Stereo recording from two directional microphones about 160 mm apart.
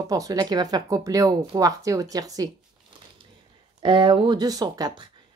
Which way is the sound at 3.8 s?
30° right (ahead or behind).